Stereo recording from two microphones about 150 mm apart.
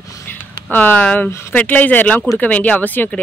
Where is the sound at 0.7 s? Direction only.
10° left (ahead or behind).